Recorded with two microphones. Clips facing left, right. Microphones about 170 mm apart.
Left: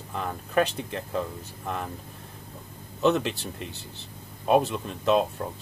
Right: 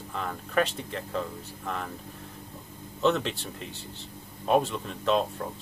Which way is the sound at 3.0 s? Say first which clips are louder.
Left 2 dB; 15° left (ahead or behind).